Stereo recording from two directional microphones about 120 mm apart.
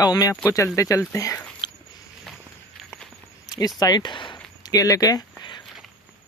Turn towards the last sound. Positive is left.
turn(degrees=35)  # may be behind; listen again after turning